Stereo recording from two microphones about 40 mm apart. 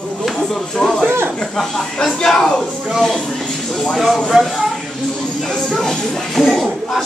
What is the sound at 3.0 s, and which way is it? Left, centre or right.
Speech, centre.